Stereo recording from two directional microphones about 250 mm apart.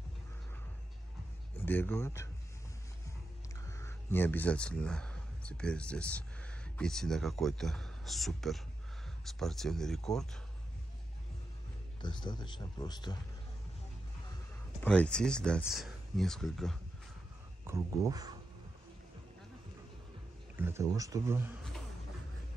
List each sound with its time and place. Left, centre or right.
1.6 s speech: centre
3.6 s speech: centre
12.0 s speech: centre
14.8 s speech: centre
17.6 s speech: centre
20.5 s speech: centre